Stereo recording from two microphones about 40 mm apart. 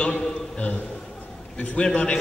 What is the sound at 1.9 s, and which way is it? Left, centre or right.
Speech, left.